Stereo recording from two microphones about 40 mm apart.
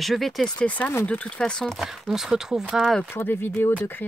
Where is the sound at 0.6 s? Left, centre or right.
Left.